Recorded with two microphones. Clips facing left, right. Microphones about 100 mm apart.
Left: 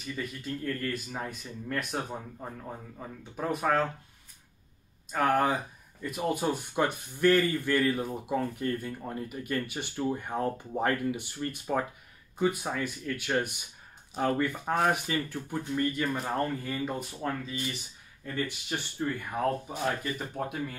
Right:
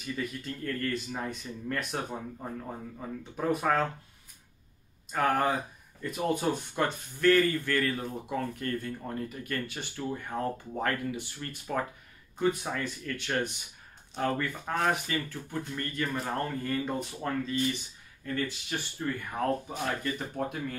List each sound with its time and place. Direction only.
0.0 s speech: centre (ahead or behind)
3.3 s speech: centre (ahead or behind)
5.1 s speech: centre (ahead or behind)